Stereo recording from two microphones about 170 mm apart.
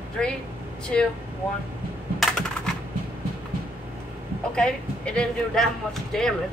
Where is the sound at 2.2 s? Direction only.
Centre (ahead or behind).